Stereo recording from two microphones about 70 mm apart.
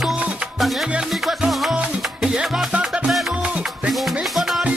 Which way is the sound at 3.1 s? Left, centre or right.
Centre.